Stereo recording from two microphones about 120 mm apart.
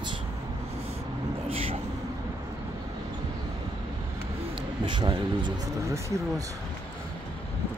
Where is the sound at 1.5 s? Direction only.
55° right (ahead or behind).